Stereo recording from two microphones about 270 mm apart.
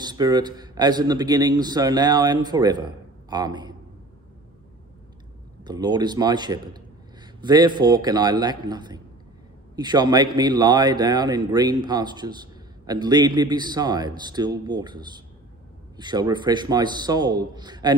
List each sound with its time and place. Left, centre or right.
0.0 s a man's voice: centre
5.6 s a man's voice: centre